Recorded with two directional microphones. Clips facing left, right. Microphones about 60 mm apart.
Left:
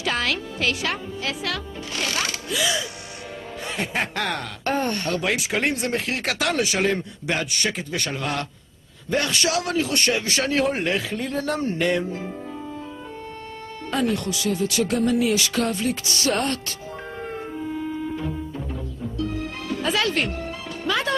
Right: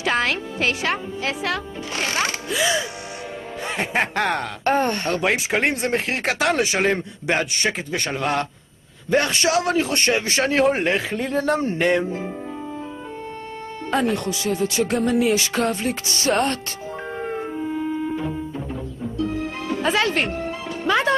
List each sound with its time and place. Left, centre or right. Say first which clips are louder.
0.0 s speech: right 3 dB; right
13.8 s speech: right 2 dB; right
17.2 s music: right 4 dB; right